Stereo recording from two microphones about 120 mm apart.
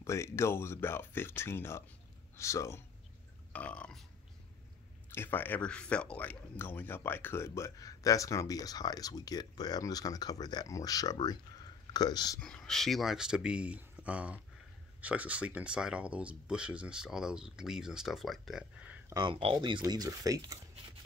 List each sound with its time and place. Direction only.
0.0 s speech: 25° left (ahead or behind)
3.5 s burping: 10° left (ahead or behind)
5.1 s speech: 15° left (ahead or behind); by 12.4 s 35° left (ahead or behind)
12.4 s speech: 5° left (ahead or behind)
19.2 s speech: 50° right (ahead or behind)
19.8 s speech: 30° right (ahead or behind)